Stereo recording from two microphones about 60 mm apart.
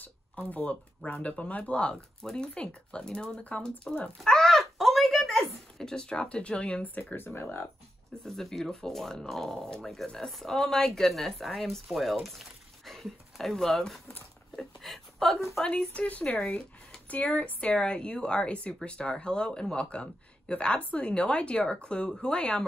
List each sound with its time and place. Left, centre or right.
0.0 s speech: left
4.2 s speech: centre
6.8 s speech: left
7.2 s speech: left
8.2 s speech: centre
14.5 s a sound: centre
15.6 s speech: centre